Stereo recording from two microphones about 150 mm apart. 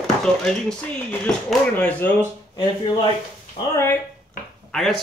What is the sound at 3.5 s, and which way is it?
Speech, 20° left (ahead or behind).